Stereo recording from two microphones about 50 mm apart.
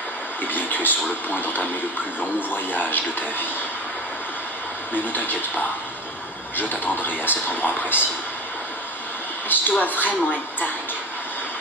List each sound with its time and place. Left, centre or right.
0.5 s speech: left
4.9 s speech: left
9.5 s speech: left